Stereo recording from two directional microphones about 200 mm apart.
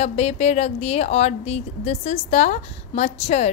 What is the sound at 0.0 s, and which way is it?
Speech, 35° left (ahead or behind).